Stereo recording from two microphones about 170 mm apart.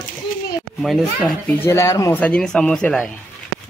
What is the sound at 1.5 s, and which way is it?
Speech, 15° left (ahead or behind).